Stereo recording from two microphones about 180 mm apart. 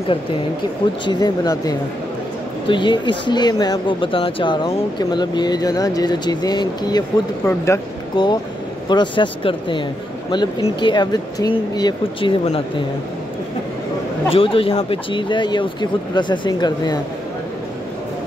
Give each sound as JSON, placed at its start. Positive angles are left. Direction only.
{"t": 1.0, "sound": "speech", "side_deg": 20}
{"t": 14.3, "sound": "speech", "side_deg": 30}